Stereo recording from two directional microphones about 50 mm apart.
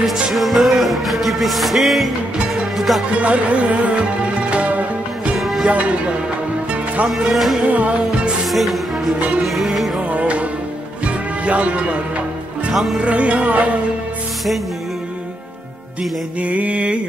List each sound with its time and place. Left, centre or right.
0.3 s music: centre
3.2 s music: right
5.4 s music: centre
5.7 s music: right
7.2 s music: centre
7.6 s music: right
8.5 s music: centre
10.0 s music: right
12.7 s music: centre
13.0 s music: right
16.3 s music: right